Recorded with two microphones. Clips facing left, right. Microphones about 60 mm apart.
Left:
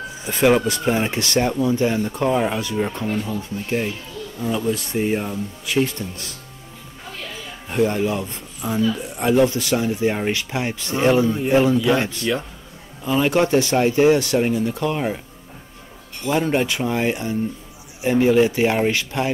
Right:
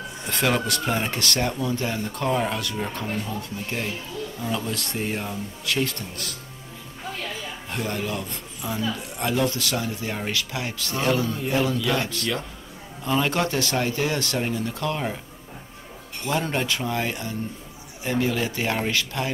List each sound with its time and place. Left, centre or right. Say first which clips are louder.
0.2 s speech: left 7 dB; centre
3.1 s speech: left 5 dB; centre; by 6.3 s left
7.7 s speech: left 9 dB; centre
13.0 s speech: left 4 dB; centre
13.4 s speech: left 7 dB; left
16.3 s speech: left 5 dB; centre